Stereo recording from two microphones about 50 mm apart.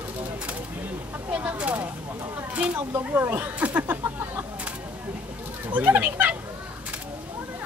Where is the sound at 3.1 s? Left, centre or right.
Right.